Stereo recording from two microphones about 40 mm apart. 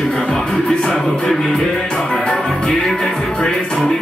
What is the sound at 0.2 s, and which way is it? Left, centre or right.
Music, centre.